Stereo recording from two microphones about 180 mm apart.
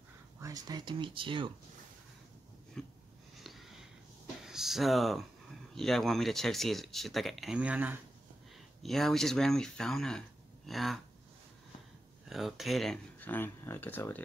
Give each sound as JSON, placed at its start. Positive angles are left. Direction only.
{"t": 0.4, "sound": "speech", "side_deg": -20}
{"t": 2.8, "sound": "a sound", "side_deg": 5}
{"t": 3.3, "sound": "sniff", "side_deg": 0}
{"t": 4.4, "sound": "speech", "side_deg": 0}
{"t": 12.3, "sound": "speech", "side_deg": 0}